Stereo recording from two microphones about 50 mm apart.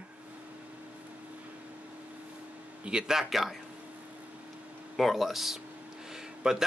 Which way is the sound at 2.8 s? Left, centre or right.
Centre.